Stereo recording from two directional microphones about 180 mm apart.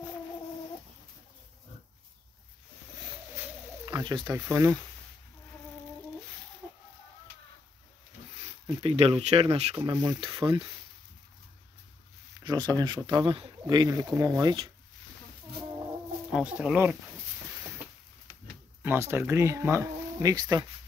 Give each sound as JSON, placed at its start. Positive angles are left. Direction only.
{"t": 3.8, "sound": "bird", "side_deg": -25}
{"t": 4.3, "sound": "speech", "side_deg": -15}
{"t": 8.6, "sound": "speech", "side_deg": -30}
{"t": 9.8, "sound": "speech", "side_deg": -25}
{"t": 12.4, "sound": "speech", "side_deg": -25}
{"t": 16.3, "sound": "speech", "side_deg": -5}
{"t": 18.8, "sound": "speech", "side_deg": -10}